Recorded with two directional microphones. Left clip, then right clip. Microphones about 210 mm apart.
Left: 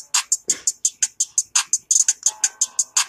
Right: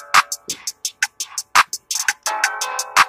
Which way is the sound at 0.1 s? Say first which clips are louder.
Right 7 dB; 30° right (ahead or behind).